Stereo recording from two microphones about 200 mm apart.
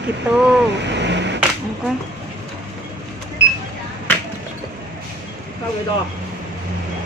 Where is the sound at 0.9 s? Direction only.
60° right (ahead or behind).